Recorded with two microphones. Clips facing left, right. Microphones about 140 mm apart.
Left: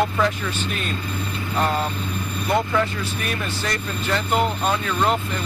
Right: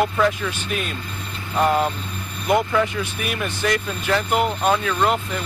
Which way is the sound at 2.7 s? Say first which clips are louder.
Right 1 dB; 5° right (ahead or behind).